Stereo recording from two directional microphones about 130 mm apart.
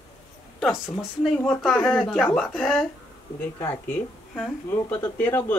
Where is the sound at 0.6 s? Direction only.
5° right (ahead or behind).